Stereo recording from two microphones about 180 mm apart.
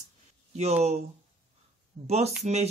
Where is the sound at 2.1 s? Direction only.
35° right (ahead or behind).